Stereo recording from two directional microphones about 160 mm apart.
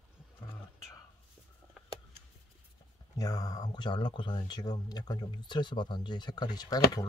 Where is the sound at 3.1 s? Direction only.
20° left (ahead or behind).